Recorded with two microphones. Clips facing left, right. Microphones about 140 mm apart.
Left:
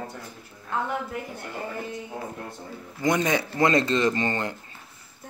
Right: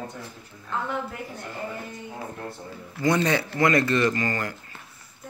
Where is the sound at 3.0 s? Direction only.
15° left (ahead or behind).